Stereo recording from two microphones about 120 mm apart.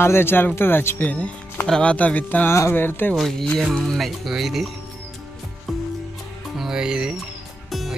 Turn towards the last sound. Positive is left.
turn(degrees=0)  # may be behind; listen again after turning